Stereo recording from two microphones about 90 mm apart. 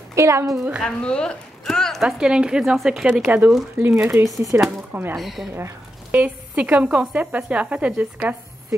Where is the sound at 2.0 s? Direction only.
10° right (ahead or behind).